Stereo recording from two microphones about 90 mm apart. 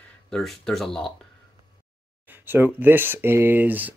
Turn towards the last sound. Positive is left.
turn(degrees=-20)  # may be behind; listen again after turning